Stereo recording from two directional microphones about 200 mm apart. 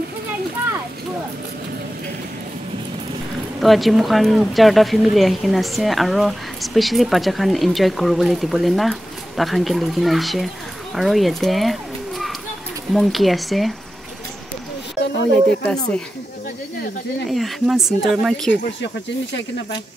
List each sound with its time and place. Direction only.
3.6 s a child's voice: centre (ahead or behind)
15.6 s speech: 5° left (ahead or behind)
17.3 s speech: centre (ahead or behind)